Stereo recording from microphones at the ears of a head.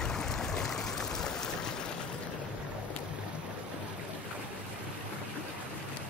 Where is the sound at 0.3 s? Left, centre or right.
Left.